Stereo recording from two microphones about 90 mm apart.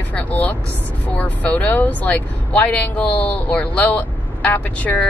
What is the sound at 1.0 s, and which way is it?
Speech, 15° left (ahead or behind).